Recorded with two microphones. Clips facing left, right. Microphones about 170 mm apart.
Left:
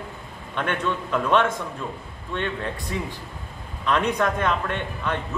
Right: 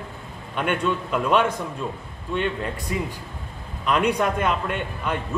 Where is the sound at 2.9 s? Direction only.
10° right (ahead or behind).